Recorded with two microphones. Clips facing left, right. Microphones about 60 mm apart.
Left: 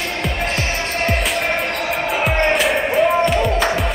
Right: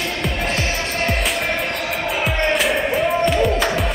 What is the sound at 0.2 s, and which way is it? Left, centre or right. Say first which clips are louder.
Music: left 1 dB; centre.